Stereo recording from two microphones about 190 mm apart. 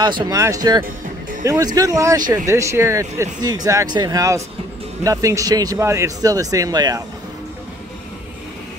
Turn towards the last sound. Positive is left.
turn(degrees=-20)  # may be behind; listen again after turning